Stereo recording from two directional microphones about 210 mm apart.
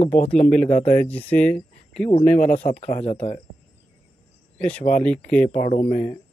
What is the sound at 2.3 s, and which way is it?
Speech, 35° left (ahead or behind).